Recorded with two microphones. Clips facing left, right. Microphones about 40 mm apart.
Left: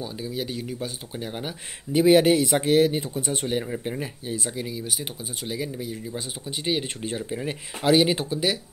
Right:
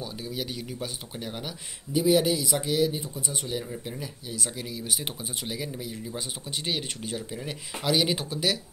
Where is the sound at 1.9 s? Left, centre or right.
Left.